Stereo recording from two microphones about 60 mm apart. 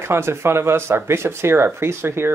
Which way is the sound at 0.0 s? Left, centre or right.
Right.